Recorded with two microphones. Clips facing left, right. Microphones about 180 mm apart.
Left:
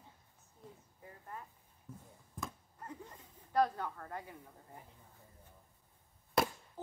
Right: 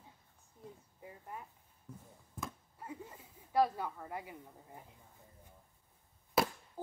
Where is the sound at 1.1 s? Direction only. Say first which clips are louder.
Right 1 dB; 15° right (ahead or behind).